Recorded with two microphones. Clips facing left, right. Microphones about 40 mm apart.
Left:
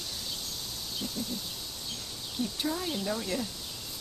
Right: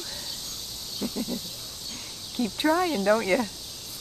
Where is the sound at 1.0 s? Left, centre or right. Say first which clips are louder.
Right 7 dB; right.